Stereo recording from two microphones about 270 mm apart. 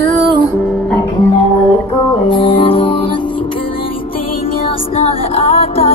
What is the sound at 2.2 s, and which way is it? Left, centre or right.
Music, centre.